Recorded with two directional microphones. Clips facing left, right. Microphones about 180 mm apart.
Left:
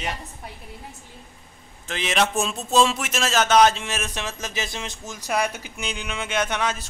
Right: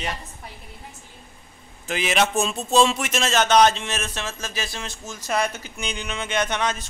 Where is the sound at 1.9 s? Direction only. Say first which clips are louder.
Right 1 dB; 5° right (ahead or behind).